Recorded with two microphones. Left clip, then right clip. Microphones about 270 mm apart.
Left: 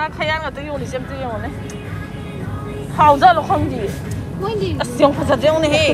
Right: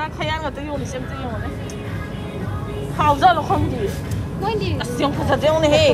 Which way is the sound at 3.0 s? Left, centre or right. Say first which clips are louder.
Left 4 dB; centre.